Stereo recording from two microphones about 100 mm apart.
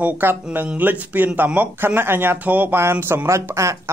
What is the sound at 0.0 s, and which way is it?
Speech, 20° right (ahead or behind).